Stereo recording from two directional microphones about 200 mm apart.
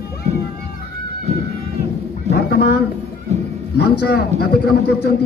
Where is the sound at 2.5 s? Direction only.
50° left (ahead or behind).